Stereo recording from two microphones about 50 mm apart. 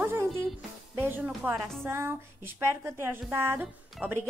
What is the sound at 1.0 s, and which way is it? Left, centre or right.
Speech, right.